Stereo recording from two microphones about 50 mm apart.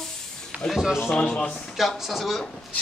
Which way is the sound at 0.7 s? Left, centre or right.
Centre.